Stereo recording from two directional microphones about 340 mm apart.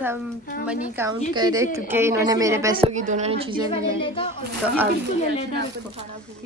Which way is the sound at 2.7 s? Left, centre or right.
Right.